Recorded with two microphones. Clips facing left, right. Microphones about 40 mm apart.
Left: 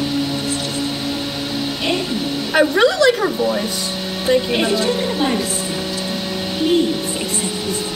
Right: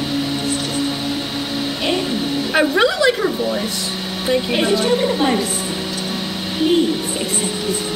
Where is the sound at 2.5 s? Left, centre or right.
Centre.